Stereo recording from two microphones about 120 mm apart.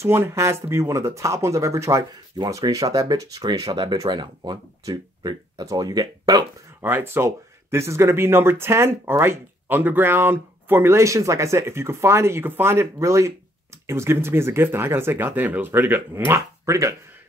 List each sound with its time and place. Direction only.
0.0 s speech: 20° right (ahead or behind)
2.3 s speech: 35° right (ahead or behind)
6.8 s speech: 15° right (ahead or behind)